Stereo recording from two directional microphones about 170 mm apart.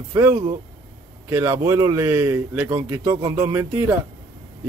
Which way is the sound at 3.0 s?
25° right (ahead or behind).